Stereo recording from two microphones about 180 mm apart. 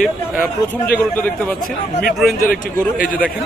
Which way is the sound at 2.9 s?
50° left (ahead or behind).